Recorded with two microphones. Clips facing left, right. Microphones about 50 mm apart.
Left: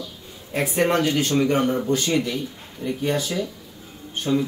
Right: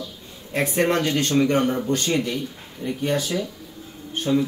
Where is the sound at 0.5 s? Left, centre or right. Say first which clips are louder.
Even; centre.